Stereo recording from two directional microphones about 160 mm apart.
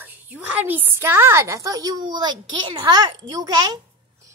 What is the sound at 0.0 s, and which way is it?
A woman's voice, 10° right (ahead or behind).